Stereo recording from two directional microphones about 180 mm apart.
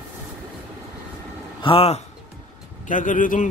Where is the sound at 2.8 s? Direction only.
45° left (ahead or behind).